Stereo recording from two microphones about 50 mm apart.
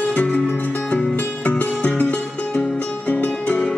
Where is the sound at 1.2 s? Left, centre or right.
Left.